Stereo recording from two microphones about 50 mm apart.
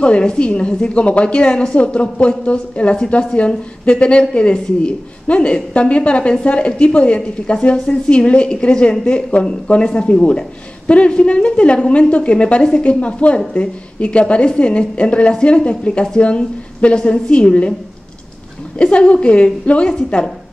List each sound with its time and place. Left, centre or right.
0.0 s a woman's voice: centre
8.1 s speech: left
18.8 s speech: left